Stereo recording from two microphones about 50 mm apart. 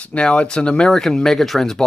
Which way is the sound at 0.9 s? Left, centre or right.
Centre.